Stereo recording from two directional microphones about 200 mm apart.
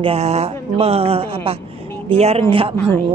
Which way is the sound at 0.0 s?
30° right (ahead or behind).